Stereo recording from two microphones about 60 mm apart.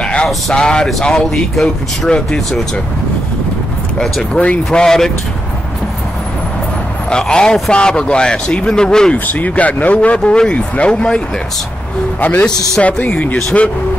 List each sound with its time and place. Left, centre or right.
0.0 s a sound: centre
0.5 s speech: centre
4.0 s speech: centre
7.1 s speech: centre
9.1 s speech: left
12.2 s speech: left